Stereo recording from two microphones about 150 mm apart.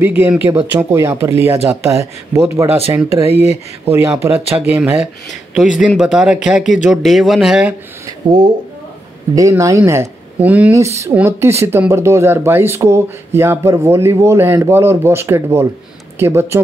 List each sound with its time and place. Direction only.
0.0 s speech: 15° right (ahead or behind)
3.3 s speech: 45° left (ahead or behind)
3.8 s speech: 15° right (ahead or behind)
5.5 s speech: 5° right (ahead or behind)
9.3 s speech: 20° right (ahead or behind)